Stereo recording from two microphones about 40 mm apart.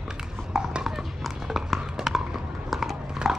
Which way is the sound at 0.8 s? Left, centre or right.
Centre.